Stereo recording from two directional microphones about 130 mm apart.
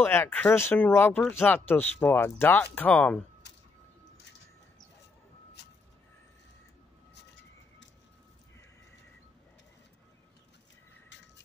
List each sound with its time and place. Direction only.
0.0 s speech: 15° left (ahead or behind)